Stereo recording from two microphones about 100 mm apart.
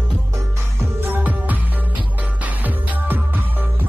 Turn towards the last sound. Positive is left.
turn(degrees=-20)  # may be behind; listen again after turning